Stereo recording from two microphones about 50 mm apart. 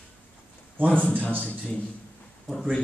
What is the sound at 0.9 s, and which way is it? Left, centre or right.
Speech, left.